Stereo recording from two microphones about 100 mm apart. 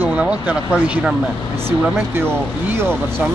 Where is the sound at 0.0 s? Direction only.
15° right (ahead or behind).